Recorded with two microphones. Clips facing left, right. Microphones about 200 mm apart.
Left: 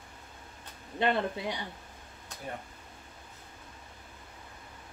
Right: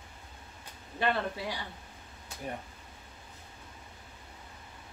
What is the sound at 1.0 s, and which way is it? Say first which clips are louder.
Speech: left 2 dB; 20° left (ahead or behind).